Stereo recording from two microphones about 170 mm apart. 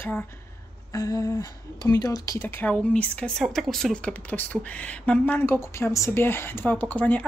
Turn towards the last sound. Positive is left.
turn(degrees=10)  # may be behind; listen again after turning